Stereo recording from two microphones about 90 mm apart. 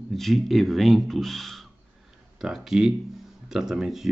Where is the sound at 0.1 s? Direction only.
Centre (ahead or behind).